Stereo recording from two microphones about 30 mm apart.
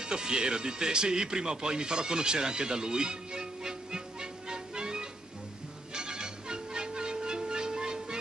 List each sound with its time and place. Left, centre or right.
0.0 s speech: right
5.9 s music: right